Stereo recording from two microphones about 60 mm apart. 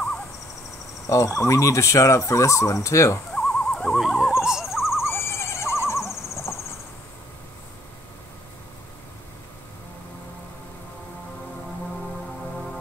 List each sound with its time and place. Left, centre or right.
1.0 s speech: left
3.3 s owl: centre
4.0 s owl: centre
5.0 s owl: left
6.1 s a sound: left